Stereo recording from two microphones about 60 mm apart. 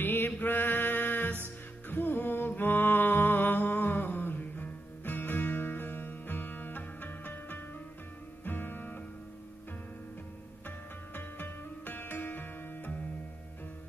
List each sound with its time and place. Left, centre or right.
0.0 s mantra: left
1.9 s music: left
11.1 s music: left